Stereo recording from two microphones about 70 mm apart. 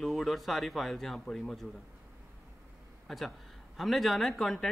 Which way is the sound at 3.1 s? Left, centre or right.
Centre.